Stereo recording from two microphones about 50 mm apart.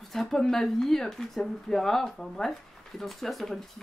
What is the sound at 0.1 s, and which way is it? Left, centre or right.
Speech, centre.